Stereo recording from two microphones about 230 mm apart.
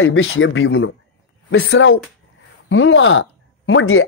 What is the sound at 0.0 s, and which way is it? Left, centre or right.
Speech, left.